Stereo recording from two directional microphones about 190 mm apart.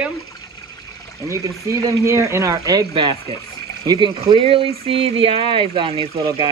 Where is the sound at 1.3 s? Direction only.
15° right (ahead or behind).